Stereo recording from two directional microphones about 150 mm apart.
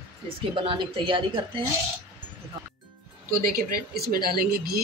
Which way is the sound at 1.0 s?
35° right (ahead or behind).